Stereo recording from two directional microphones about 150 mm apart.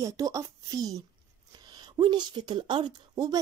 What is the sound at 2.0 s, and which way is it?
Speech, 30° right (ahead or behind).